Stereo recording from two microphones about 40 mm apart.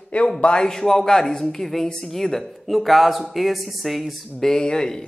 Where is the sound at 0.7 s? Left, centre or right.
Centre.